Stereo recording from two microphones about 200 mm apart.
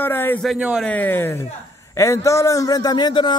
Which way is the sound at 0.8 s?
10° left (ahead or behind).